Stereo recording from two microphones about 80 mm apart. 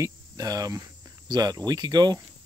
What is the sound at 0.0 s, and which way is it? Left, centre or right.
Speech, right.